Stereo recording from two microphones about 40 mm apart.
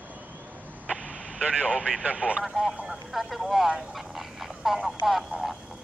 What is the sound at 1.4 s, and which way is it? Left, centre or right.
Speech, right.